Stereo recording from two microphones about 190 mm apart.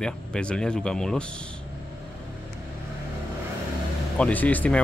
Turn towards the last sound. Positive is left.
turn(degrees=5)  # may be behind; listen again after turning